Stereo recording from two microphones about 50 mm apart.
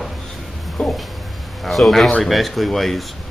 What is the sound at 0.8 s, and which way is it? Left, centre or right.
Speech, centre.